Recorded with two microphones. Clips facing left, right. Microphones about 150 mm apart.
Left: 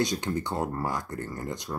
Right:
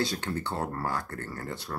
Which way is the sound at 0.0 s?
15° left (ahead or behind).